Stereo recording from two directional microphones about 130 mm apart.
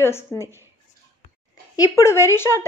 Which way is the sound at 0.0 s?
20° left (ahead or behind).